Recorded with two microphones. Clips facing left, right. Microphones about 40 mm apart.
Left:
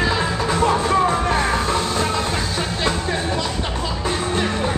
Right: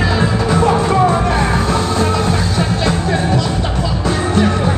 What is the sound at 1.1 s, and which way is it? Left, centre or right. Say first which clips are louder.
Music: right 4 dB; right.